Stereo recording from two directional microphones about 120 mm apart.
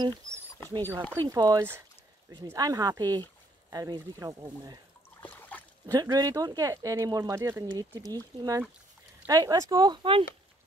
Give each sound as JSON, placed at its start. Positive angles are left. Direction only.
{"t": 0.7, "sound": "speech", "side_deg": -30}
{"t": 5.2, "sound": "a sound", "side_deg": 15}
{"t": 5.9, "sound": "speech", "side_deg": -30}